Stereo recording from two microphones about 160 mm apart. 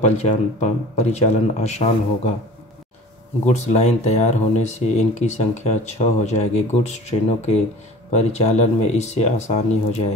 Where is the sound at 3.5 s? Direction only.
40° left (ahead or behind).